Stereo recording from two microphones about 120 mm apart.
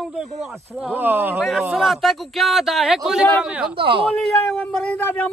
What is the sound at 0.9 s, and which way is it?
Speech, 15° right (ahead or behind).